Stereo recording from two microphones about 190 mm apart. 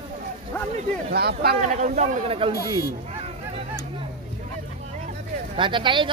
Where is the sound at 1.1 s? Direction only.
55° right (ahead or behind).